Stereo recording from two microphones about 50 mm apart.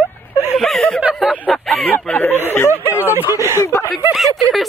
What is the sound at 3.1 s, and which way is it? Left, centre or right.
Speech, right.